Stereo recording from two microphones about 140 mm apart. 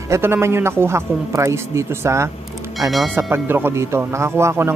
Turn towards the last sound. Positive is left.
turn(degrees=-20)  # may be behind; listen again after turning